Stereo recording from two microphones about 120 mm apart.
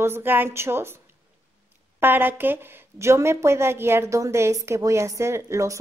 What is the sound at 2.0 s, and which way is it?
A woman's voice, 15° right (ahead or behind).